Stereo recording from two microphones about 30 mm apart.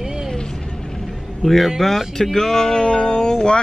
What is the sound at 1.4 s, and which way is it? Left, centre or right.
Speech, centre.